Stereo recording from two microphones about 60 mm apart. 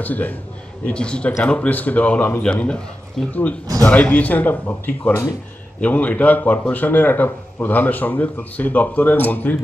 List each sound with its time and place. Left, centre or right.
0.0 s speech: left
0.8 s a man's voice: centre
5.8 s speech: left